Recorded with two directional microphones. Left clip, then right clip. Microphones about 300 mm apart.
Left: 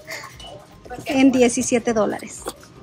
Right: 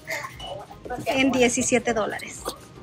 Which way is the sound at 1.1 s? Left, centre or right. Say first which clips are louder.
Left 4 dB; centre.